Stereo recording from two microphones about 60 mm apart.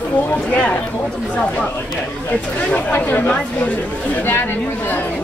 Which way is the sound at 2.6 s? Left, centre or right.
Left.